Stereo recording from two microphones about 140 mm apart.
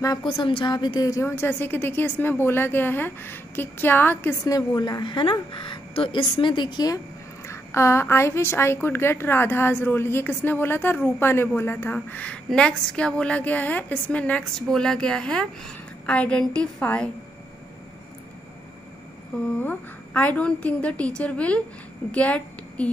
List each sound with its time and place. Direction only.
0.0 s a woman's voice: 25° left (ahead or behind)
0.3 s a woman's voice: 35° left (ahead or behind); by 4.4 s 15° left (ahead or behind)
4.5 s a woman's voice: 30° left (ahead or behind)
7.4 s a woman's voice: 20° left (ahead or behind)
19.6 s a woman's voice: 10° left (ahead or behind)